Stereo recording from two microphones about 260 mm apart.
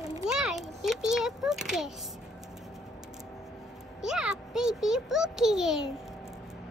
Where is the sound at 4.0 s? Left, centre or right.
Centre.